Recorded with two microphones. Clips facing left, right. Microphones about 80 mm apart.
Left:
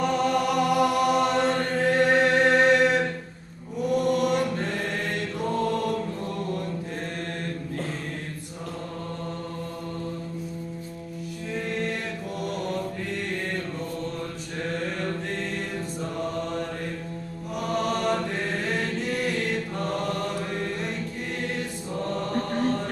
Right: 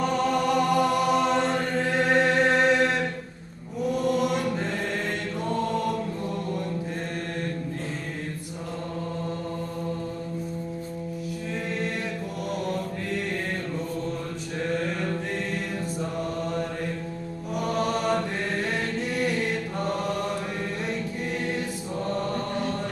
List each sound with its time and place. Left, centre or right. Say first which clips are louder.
0.0 s chant: even; centre
3.8 s mantra: left 1 dB; centre
12.6 s mantra: even; centre
14.7 s mantra: right 1 dB; centre
21.5 s choir: right 1 dB; centre
22.5 s chant: left 3 dB; left